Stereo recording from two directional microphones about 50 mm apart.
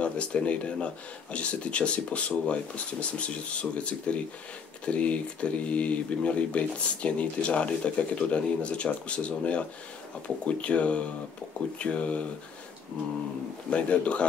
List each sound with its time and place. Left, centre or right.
0.0 s speech: left
13.7 s speech: left